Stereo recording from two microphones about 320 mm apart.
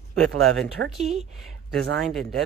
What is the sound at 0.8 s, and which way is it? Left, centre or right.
Speech, right.